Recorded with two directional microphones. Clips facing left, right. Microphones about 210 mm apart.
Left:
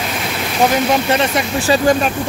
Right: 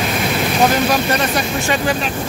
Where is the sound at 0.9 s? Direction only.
25° left (ahead or behind).